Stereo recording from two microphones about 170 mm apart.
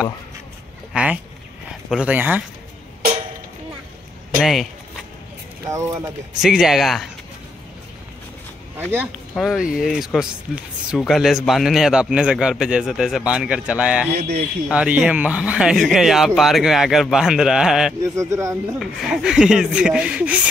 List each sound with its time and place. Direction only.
0.9 s speech: 5° right (ahead or behind)
4.4 s speech: centre (ahead or behind)
5.7 s speech: 15° right (ahead or behind)
6.4 s speech: centre (ahead or behind)
8.7 s speech: 10° right (ahead or behind)
9.3 s speech: centre (ahead or behind)
14.1 s a man's voice: 70° right (ahead or behind)
14.7 s speech: 5° right (ahead or behind)
18.0 s speech: 15° right (ahead or behind)
18.8 s speech: centre (ahead or behind)